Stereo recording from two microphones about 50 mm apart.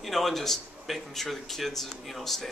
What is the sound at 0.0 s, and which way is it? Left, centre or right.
A man's voice, centre.